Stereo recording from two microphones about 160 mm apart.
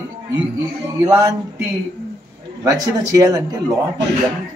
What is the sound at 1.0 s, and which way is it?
Speech, 20° right (ahead or behind).